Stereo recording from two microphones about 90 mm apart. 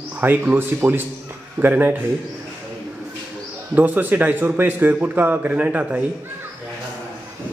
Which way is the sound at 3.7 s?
20° right (ahead or behind).